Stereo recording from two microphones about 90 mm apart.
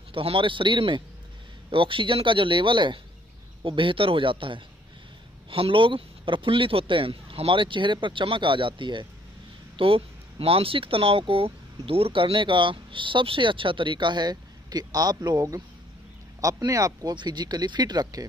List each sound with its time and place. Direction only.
0.1 s a man's voice: 85° right
5.5 s speech: 85° right; by 9.0 s 65° right (ahead or behind)
9.8 s speech: 90° right; by 17.1 s 40° right (ahead or behind)
17.1 s speech: 55° right (ahead or behind)